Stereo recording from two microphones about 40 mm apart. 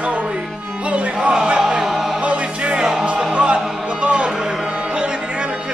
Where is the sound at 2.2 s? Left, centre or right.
Right.